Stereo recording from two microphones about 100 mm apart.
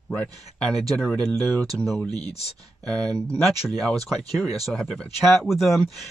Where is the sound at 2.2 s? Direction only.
90° left.